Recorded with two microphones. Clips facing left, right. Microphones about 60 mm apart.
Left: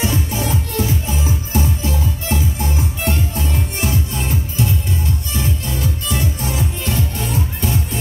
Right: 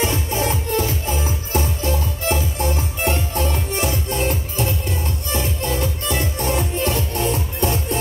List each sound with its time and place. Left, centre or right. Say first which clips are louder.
0.0 s music: even; right